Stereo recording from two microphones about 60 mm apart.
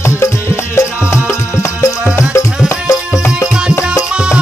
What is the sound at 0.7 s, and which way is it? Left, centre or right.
Music, left.